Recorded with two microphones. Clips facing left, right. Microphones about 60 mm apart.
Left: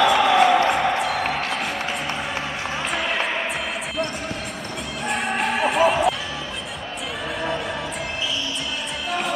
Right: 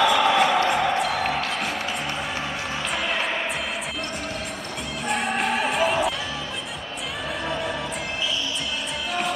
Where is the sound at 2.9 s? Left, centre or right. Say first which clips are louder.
Left 2 dB; centre.